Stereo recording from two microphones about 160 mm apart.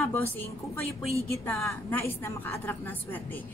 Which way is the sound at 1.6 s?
15° left (ahead or behind).